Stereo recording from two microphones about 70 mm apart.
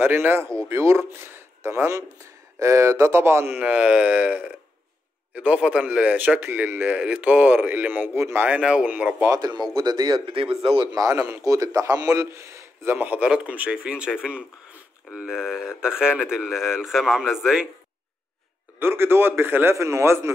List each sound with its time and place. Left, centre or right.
0.0 s a man's voice: right
3.5 s speech: centre; by 8.5 s right
8.5 s speech: centre
9.3 s speech: right
11.1 s a man's voice: right
11.4 s a man's voice: right
12.9 s speech: right; by 17.6 s centre
18.8 s a man's voice: right
19.7 s a man's voice: right